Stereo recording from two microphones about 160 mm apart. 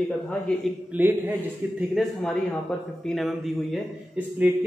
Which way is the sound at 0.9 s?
10° right (ahead or behind).